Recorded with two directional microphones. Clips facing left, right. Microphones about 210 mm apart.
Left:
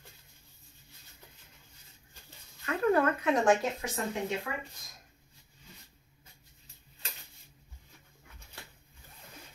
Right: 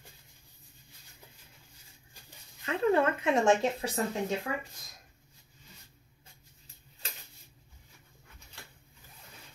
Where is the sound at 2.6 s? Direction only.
25° right (ahead or behind).